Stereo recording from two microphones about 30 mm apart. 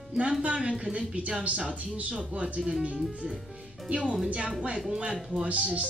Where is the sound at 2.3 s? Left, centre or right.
Right.